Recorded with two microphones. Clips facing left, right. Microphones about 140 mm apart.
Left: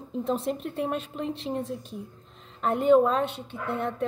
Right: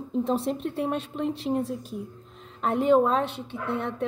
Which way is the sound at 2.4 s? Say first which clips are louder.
Right 1 dB; centre (ahead or behind).